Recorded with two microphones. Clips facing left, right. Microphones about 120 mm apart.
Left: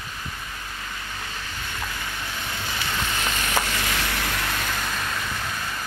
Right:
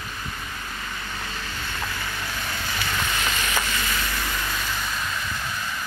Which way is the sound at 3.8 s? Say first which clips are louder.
Left 1 dB; 70° left (ahead or behind).